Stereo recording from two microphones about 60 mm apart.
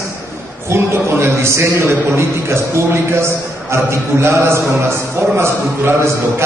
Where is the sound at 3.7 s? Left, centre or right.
Right.